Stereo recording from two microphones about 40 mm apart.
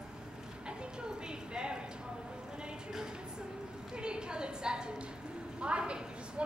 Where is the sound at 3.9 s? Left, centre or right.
Right.